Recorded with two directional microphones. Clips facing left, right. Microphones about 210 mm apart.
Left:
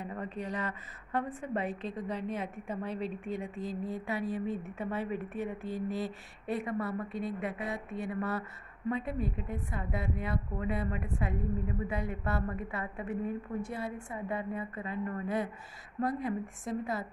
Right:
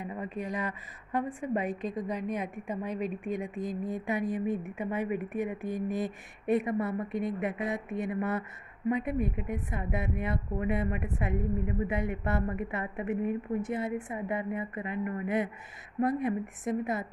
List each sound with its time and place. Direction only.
0.0 s a woman's voice: 10° right (ahead or behind)